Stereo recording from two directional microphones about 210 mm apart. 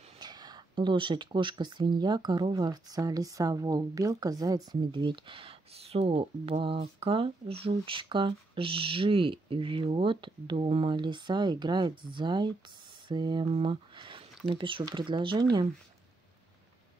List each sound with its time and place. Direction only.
0.2 s speech: 20° right (ahead or behind)